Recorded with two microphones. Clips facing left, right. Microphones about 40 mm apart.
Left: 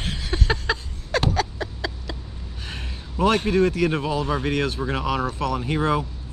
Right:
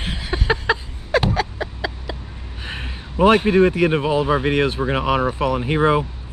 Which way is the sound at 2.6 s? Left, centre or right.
Right.